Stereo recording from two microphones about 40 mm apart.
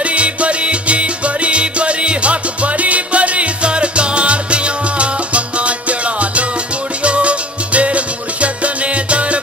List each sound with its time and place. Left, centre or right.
0.0 s music: right